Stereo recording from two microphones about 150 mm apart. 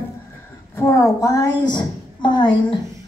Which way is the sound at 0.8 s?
20° left (ahead or behind).